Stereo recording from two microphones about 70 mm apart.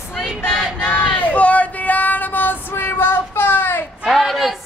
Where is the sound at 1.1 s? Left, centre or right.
Centre.